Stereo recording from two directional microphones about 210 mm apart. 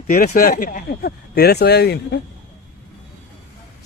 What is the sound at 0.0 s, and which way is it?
Speech, 45° left (ahead or behind).